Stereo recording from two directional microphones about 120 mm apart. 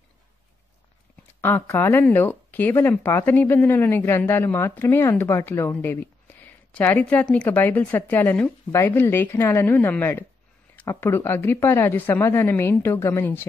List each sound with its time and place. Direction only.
1.4 s speech: 20° left (ahead or behind)